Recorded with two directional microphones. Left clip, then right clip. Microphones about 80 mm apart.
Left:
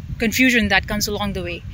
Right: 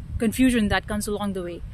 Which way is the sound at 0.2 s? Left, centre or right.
Right.